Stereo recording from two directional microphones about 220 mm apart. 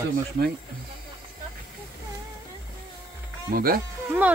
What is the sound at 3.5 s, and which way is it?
Speech, 40° right (ahead or behind).